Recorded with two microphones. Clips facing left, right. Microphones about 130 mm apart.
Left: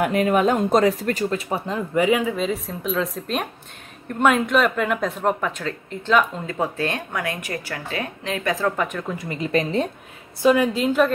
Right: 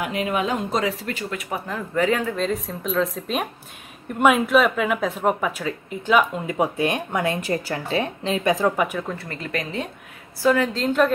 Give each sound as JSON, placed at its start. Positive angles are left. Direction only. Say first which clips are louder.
{"t": 0.0, "sound": "a woman's voice", "louder": "left 6 dB", "side_deg": 45}
{"t": 1.3, "sound": "speech", "louder": "left 4 dB", "side_deg": 30}
{"t": 2.0, "sound": "speech", "louder": "left 2 dB", "side_deg": 10}
{"t": 9.1, "sound": "speech", "louder": "left 6 dB", "side_deg": 15}
{"t": 10.4, "sound": "a woman's voice", "louder": "left 2 dB", "side_deg": 15}